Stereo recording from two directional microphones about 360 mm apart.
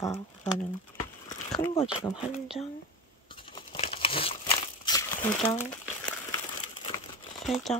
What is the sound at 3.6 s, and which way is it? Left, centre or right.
Crumpling, centre.